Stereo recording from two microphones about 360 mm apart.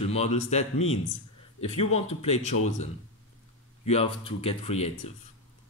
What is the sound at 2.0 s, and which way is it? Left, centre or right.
Speech, centre.